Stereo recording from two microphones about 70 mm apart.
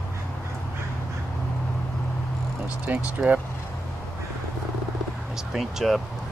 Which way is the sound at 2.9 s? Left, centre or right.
Right.